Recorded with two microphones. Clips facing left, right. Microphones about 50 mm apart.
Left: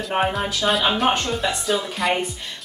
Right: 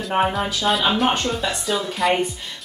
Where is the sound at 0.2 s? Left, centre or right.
Centre.